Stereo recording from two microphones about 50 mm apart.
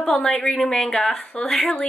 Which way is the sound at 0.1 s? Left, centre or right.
Centre.